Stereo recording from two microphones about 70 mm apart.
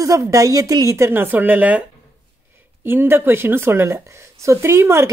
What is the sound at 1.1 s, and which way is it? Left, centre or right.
Speech, right.